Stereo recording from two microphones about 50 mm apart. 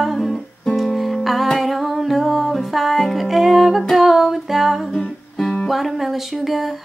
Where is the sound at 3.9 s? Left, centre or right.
Centre.